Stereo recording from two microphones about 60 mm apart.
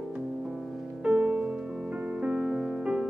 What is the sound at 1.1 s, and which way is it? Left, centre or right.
Music, centre.